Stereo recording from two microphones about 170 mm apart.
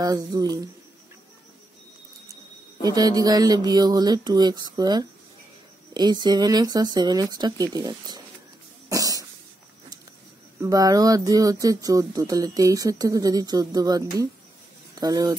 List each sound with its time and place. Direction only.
0.0 s speech: 20° right (ahead or behind)
2.8 s speech: 25° right (ahead or behind)
8.8 s cough: 20° right (ahead or behind)
10.6 s speech: 20° right (ahead or behind)